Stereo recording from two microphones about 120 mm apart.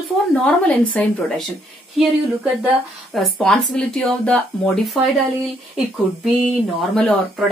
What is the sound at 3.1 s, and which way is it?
Speech, 5° left (ahead or behind).